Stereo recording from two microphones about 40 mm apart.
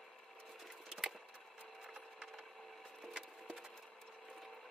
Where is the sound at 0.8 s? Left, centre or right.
Centre.